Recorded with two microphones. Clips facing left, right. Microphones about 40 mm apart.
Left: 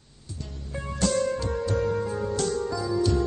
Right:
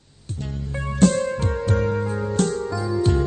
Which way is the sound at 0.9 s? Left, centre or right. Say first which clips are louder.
Right 7 dB; right.